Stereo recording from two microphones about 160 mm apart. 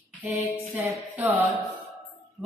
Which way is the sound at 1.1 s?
10° right (ahead or behind).